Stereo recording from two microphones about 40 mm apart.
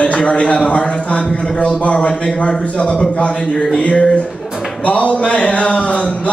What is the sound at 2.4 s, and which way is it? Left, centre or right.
Speech, left.